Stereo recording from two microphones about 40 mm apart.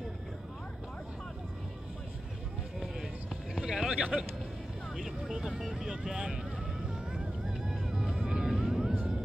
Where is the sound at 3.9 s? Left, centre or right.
Right.